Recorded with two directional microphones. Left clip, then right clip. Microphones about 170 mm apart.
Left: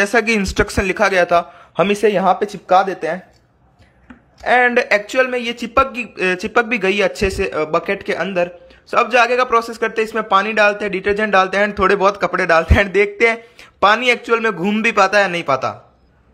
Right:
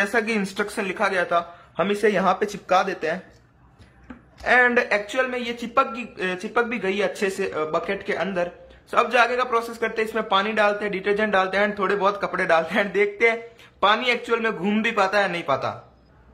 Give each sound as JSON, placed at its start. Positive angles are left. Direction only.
{"t": 0.0, "sound": "a man's voice", "side_deg": 40}
{"t": 4.4, "sound": "a man's voice", "side_deg": 35}